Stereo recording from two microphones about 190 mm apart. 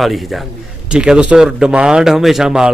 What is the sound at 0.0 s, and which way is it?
A man's voice, centre (ahead or behind).